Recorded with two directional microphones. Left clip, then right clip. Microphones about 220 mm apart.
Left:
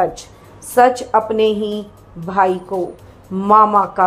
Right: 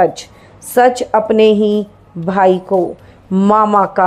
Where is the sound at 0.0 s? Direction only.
35° right (ahead or behind).